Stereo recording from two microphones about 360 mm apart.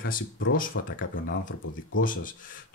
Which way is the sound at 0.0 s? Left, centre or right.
Left.